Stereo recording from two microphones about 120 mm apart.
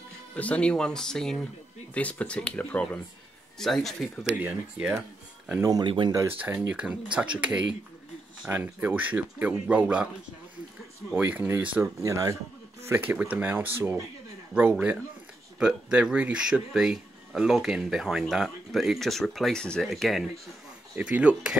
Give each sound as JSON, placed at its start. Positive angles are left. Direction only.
{"t": 0.4, "sound": "speech", "side_deg": 10}
{"t": 5.6, "sound": "speech", "side_deg": -30}
{"t": 5.9, "sound": "speech", "side_deg": -45}
{"t": 6.2, "sound": "speech", "side_deg": -15}
{"t": 11.1, "sound": "speech", "side_deg": -15}
{"t": 12.0, "sound": "speech", "side_deg": -30}
{"t": 12.8, "sound": "speech", "side_deg": -15}
{"t": 20.9, "sound": "speech", "side_deg": -10}